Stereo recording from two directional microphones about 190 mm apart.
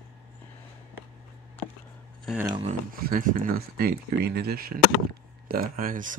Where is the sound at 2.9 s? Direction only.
50° right (ahead or behind).